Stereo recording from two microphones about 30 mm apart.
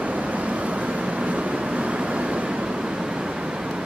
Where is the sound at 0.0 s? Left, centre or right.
Right.